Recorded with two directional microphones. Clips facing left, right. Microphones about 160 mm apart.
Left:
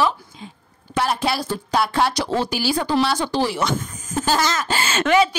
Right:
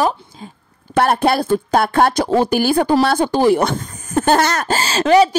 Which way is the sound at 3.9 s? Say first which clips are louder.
Right 7 dB; 60° right (ahead or behind).